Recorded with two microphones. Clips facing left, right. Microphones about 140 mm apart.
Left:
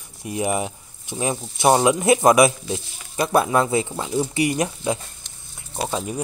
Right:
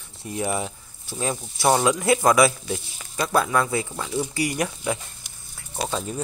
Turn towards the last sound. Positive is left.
turn(degrees=15)  # may be behind; listen again after turning